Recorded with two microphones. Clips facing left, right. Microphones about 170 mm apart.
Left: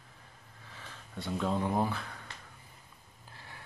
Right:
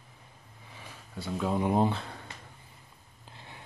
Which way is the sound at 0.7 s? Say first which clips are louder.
Right 2 dB; 15° right (ahead or behind).